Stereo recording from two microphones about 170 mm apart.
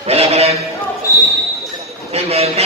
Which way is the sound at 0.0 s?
35° right (ahead or behind).